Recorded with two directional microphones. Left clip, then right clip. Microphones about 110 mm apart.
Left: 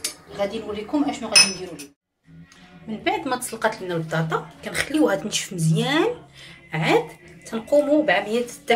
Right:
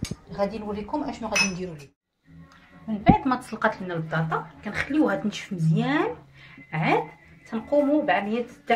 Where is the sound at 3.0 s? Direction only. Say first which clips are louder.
Right 2 dB; 85° right.